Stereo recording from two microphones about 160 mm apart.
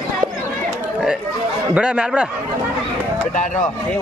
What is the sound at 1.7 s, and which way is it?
Speech, 5° right (ahead or behind).